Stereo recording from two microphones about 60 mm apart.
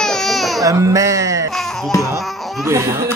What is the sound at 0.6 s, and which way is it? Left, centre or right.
Speech, right.